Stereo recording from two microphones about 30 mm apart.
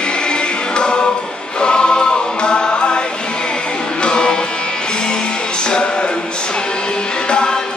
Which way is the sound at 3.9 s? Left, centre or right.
Left.